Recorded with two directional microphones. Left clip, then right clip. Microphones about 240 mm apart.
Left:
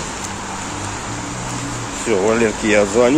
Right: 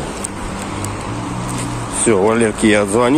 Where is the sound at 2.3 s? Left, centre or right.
Centre.